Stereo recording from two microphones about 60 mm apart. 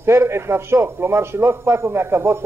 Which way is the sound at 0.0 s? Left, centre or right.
Right.